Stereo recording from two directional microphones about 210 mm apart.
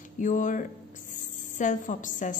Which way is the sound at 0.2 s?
35° left (ahead or behind).